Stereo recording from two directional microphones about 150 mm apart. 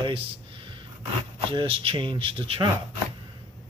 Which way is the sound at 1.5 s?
35° right (ahead or behind).